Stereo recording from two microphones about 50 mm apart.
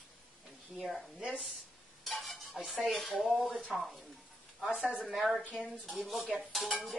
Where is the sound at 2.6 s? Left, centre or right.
Centre.